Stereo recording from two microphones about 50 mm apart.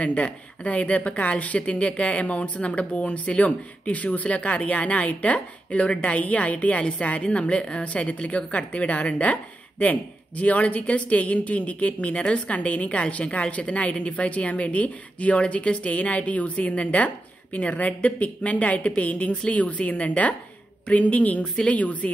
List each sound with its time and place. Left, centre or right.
0.0 s a woman's voice: left